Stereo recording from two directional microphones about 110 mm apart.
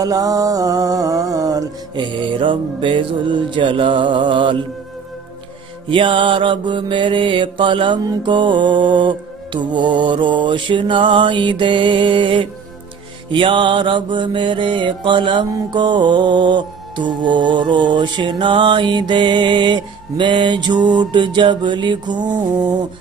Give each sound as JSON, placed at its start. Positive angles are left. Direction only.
{"t": 0.0, "sound": "mantra", "side_deg": -35}
{"t": 5.9, "sound": "mantra", "side_deg": -50}